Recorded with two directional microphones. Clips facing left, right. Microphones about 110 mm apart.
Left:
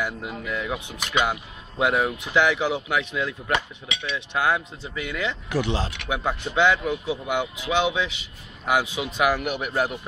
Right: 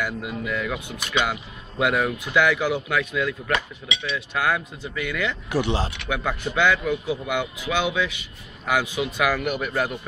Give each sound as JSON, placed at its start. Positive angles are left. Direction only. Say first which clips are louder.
{"t": 0.3, "sound": "speech", "louder": "right 2 dB", "side_deg": 30}
{"t": 0.7, "sound": "speech", "louder": "even", "side_deg": 15}
{"t": 5.5, "sound": "speech", "louder": "right 2 dB", "side_deg": -10}
{"t": 6.0, "sound": "speech", "louder": "even", "side_deg": 20}